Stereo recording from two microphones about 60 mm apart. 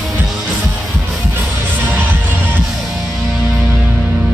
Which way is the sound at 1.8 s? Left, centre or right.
Right.